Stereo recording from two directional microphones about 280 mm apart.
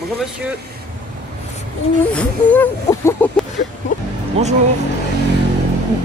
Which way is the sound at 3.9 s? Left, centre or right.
Left.